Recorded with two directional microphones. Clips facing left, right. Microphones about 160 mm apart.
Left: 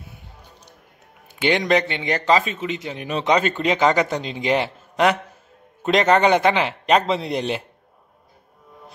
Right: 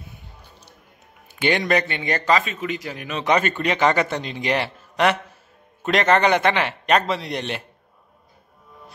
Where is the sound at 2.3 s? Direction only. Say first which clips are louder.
Left 2 dB; 30° left (ahead or behind).